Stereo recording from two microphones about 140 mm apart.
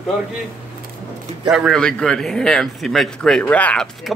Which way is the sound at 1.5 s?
Centre (ahead or behind).